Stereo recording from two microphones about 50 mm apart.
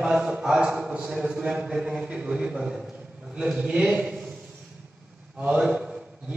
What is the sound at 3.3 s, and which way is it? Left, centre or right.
Speech, centre.